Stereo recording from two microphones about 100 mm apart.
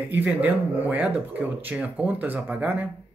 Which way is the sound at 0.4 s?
15° right (ahead or behind).